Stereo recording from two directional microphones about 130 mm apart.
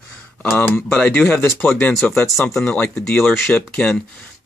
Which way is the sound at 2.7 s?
15° left (ahead or behind).